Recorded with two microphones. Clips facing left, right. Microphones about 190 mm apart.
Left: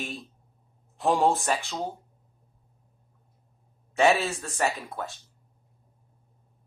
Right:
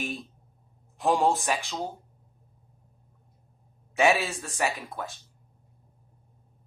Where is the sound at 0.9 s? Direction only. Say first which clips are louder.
Left 1 dB; centre (ahead or behind).